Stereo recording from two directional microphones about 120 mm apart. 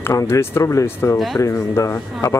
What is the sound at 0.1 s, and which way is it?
A man's voice, 20° left (ahead or behind).